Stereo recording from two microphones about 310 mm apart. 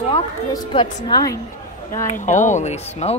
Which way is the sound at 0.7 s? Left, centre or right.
Centre.